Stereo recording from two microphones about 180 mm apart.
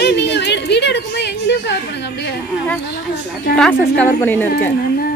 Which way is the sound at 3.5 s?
5° left (ahead or behind).